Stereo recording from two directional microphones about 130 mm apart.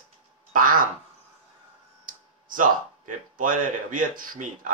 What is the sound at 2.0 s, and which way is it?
Speech, 90° right.